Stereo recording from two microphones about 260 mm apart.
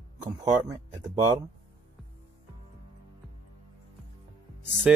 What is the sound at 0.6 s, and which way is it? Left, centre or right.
Speech, centre.